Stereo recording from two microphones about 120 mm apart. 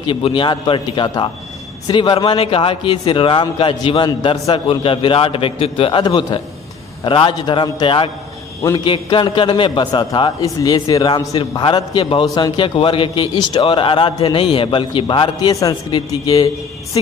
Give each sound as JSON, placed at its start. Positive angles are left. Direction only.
{"t": 0.0, "sound": "a man's voice", "side_deg": 45}
{"t": 10.4, "sound": "a man's voice", "side_deg": 30}